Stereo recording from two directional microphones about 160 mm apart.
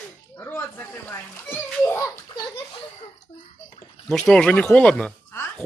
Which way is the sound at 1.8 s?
15° left (ahead or behind).